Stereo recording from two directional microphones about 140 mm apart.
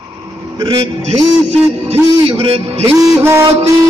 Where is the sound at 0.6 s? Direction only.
45° right (ahead or behind).